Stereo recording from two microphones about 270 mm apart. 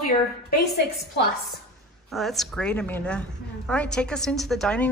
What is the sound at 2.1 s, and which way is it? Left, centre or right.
A woman's voice, centre.